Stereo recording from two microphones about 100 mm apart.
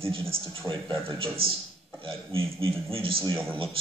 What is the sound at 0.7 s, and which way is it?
Speech, 50° right (ahead or behind).